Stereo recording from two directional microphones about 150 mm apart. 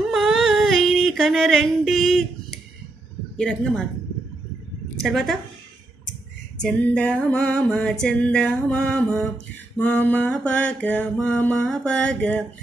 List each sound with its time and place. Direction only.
0.1 s a sound: centre (ahead or behind)
5.0 s a woman's voice: centre (ahead or behind)
6.6 s music: 5° left (ahead or behind)